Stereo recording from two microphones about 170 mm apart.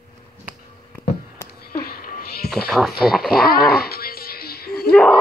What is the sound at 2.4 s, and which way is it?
Speech, centre (ahead or behind).